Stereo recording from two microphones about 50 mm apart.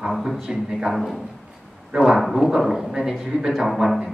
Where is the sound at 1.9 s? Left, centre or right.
Centre.